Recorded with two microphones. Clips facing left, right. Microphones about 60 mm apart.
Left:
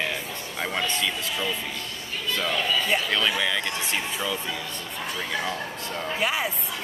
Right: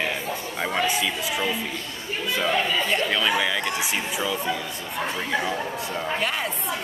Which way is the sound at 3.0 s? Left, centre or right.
Centre.